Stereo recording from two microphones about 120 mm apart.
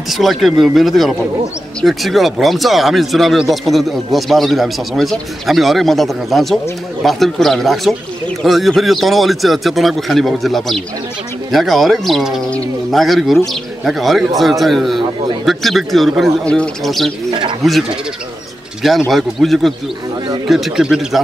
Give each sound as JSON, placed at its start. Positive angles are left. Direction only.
{"t": 0.1, "sound": "speech", "side_deg": 0}
{"t": 17.3, "sound": "speech", "side_deg": -45}
{"t": 18.8, "sound": "speech", "side_deg": 0}